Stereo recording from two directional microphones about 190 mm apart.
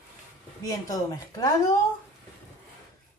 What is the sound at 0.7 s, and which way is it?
Speech, 20° left (ahead or behind).